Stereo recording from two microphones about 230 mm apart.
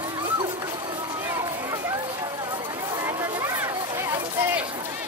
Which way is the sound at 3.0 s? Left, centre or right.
Centre.